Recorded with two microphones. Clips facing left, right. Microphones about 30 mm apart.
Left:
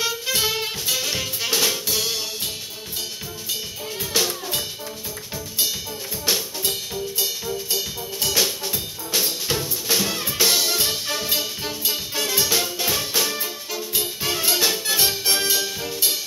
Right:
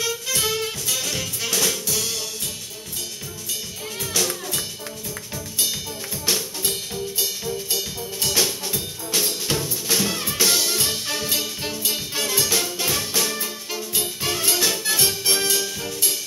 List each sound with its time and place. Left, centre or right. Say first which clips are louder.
0.0 s music: left 1 dB; left
6.2 s music: left 1 dB; centre